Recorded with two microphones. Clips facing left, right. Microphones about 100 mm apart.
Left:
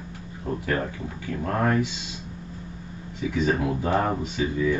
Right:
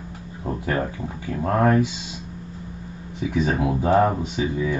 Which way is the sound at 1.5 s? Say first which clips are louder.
Right 5 dB; 30° right (ahead or behind).